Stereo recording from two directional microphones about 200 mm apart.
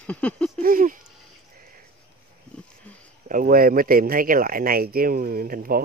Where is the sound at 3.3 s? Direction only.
45° right (ahead or behind).